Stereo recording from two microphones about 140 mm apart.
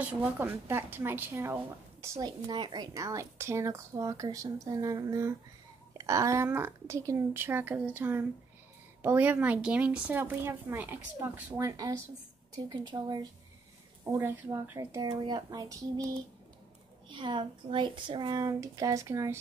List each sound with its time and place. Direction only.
0.0 s a woman's voice: 10° right (ahead or behind); by 13.3 s 30° right (ahead or behind)
14.0 s a woman's voice: 20° right (ahead or behind)